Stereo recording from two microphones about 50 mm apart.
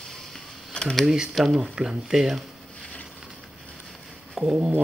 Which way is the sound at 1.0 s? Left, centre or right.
Centre.